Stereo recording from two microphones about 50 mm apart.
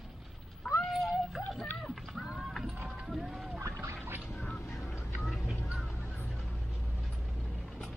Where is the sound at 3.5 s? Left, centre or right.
Right.